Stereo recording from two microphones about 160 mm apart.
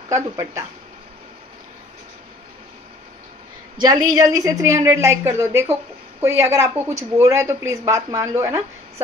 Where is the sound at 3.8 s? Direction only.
25° right (ahead or behind).